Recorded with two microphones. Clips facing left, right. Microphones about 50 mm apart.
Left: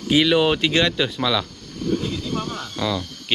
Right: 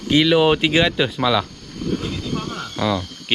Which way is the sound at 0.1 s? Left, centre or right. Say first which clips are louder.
Right 2 dB; centre.